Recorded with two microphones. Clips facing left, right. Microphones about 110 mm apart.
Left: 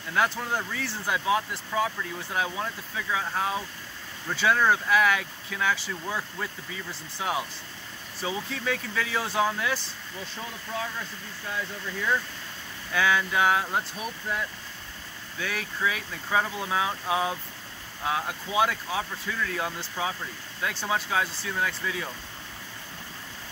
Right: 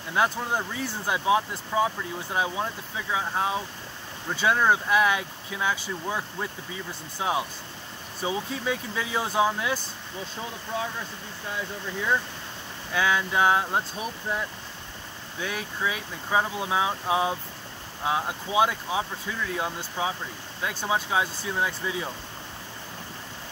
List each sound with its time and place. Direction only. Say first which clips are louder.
0.1 s speech: right 1 dB; 15° right (ahead or behind)
12.9 s speech: even; 15° right (ahead or behind)
15.4 s speech: even; 15° right (ahead or behind)